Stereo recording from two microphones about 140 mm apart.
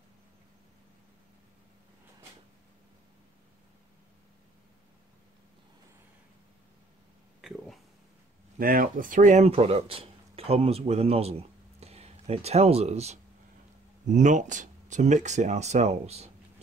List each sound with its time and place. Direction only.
8.5 s speech: 90° right; by 13.2 s 50° right (ahead or behind)
14.1 s speech: 65° right (ahead or behind)